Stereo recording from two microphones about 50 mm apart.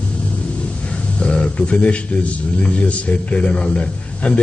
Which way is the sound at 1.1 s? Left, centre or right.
Left.